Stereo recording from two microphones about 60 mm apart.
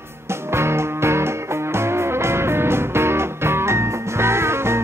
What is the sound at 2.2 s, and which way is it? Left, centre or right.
Music, right.